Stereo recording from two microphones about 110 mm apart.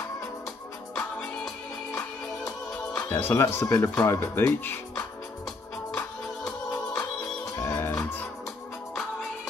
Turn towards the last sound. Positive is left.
turn(degrees=20)  # may be behind; listen again after turning